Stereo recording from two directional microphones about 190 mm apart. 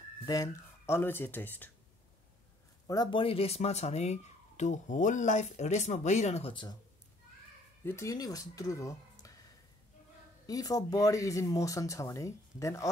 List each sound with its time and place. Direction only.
0.2 s speech: 20° left (ahead or behind)
2.9 s speech: 25° left (ahead or behind)
7.8 s speech: 15° left (ahead or behind)
10.4 s speech: 20° left (ahead or behind)